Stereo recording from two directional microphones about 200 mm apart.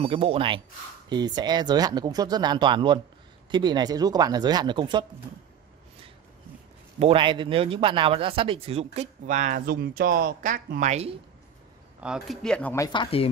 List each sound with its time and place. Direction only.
0.0 s speech: 25° right (ahead or behind)
7.0 s speech: 25° right (ahead or behind)
12.0 s speech: centre (ahead or behind)
12.8 s speech: 20° left (ahead or behind)